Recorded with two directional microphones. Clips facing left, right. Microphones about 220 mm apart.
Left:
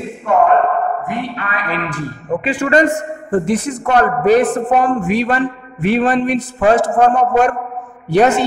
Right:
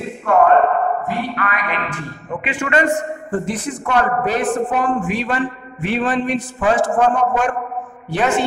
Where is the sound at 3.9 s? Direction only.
40° left (ahead or behind).